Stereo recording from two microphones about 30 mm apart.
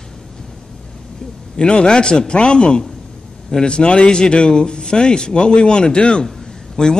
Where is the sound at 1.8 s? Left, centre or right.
Left.